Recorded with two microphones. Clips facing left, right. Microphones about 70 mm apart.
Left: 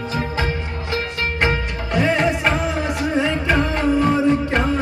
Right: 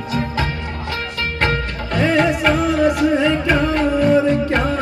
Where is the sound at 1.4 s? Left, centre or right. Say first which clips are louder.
Right 1 dB; centre.